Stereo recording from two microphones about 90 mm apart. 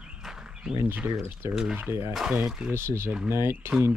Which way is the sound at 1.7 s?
25° right (ahead or behind).